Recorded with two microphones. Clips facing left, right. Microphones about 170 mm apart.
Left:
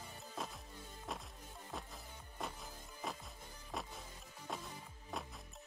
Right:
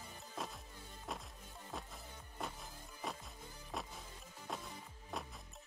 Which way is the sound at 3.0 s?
Centre (ahead or behind).